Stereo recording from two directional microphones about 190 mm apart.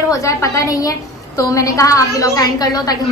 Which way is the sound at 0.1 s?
15° left (ahead or behind).